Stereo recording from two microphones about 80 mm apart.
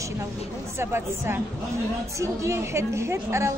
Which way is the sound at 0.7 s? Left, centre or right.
Right.